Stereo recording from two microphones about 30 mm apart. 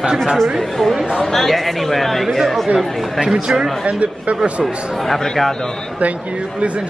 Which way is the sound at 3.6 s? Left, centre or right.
Right.